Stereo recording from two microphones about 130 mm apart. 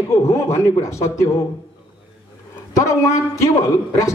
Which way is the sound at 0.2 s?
20° left (ahead or behind).